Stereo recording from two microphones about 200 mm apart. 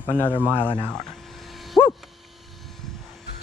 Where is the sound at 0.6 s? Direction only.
25° left (ahead or behind).